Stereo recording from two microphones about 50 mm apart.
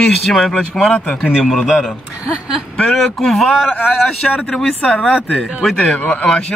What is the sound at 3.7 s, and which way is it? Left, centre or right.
Speech, left.